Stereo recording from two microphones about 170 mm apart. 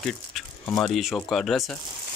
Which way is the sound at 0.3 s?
Centre (ahead or behind).